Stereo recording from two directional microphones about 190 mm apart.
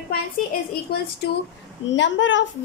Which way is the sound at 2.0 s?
75° left (ahead or behind).